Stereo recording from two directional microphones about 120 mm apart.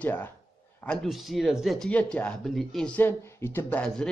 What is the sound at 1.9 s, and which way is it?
A man's voice, 10° left (ahead or behind).